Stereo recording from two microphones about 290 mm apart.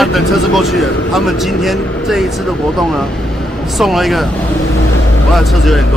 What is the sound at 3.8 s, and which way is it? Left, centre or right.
Speech, centre.